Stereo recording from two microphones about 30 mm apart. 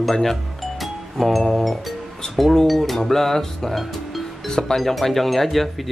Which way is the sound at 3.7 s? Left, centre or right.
Centre.